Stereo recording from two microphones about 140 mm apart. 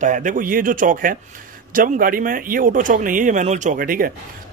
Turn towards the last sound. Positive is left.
turn(degrees=-90)